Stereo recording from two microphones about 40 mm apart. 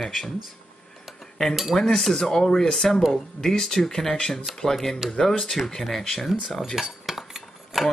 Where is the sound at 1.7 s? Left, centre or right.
Centre.